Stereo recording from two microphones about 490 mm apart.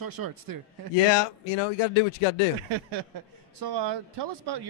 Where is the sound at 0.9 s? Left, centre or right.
Left.